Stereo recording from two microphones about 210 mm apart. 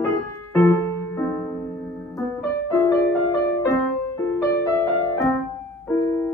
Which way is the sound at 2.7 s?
15° left (ahead or behind).